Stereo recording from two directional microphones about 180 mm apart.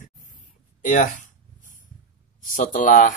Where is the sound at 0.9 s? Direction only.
45° left (ahead or behind).